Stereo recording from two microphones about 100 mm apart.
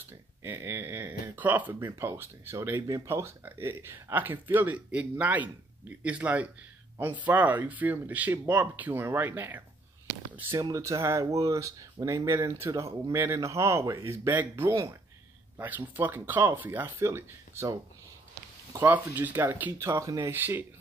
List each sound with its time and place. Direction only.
0.4 s speech: 25° right (ahead or behind)
10.6 s speech: 30° right (ahead or behind)
15.5 s speech: 20° right (ahead or behind)
20.3 s speech: 20° right (ahead or behind)